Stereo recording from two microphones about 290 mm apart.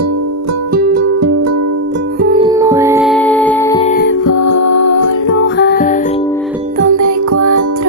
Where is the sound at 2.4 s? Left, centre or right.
Centre.